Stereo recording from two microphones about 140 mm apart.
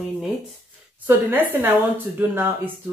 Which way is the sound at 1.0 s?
15° right (ahead or behind).